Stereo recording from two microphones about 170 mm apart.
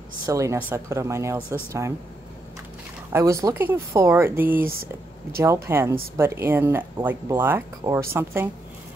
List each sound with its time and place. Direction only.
0.3 s speech: 15° right (ahead or behind)
3.1 s speech: 15° right (ahead or behind)